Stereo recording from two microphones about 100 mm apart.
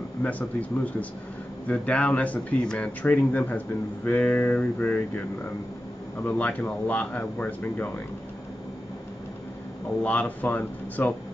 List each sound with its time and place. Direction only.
0.2 s speech: 15° left (ahead or behind)
6.2 s speech: 15° left (ahead or behind)
10.0 s speech: 15° left (ahead or behind)